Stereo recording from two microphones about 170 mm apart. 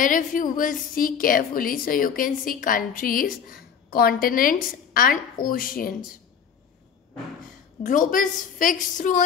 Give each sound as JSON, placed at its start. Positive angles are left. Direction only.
{"t": 0.0, "sound": "a woman's voice", "side_deg": 50}
{"t": 7.8, "sound": "a woman's voice", "side_deg": 50}